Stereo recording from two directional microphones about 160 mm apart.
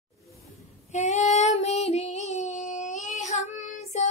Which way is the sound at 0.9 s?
45° left (ahead or behind).